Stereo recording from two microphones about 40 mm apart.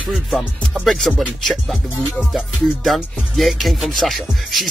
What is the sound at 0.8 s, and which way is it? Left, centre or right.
Speech, centre.